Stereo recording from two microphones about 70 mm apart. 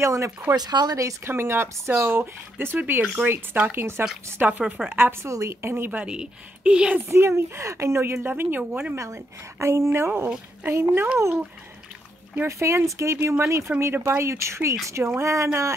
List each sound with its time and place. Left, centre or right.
0.0 s speech: right
0.6 s speech: right
1.2 s speech: right
4.5 s a woman's voice: right
4.8 s speech: right
5.3 s speech: right
5.9 s a woman's voice: centre
7.1 s speech: right
8.9 s speech: right
12.4 s speech: right